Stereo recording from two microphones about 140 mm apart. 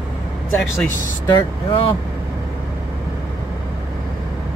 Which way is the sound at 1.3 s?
35° left (ahead or behind).